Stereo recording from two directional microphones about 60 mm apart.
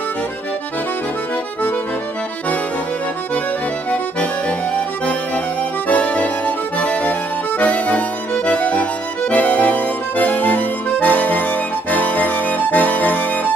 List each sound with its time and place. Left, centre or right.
3.9 s accordion: left
8.5 s music: left